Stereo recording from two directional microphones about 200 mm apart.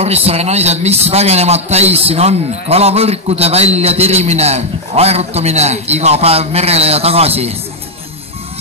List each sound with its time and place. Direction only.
0.0 s a man's voice: 30° right (ahead or behind)